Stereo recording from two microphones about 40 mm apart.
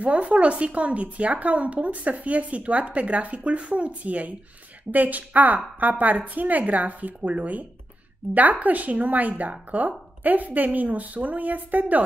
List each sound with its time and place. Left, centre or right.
0.0 s speech: right